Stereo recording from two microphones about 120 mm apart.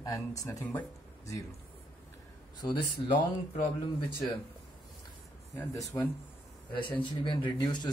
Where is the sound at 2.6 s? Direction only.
40° left (ahead or behind).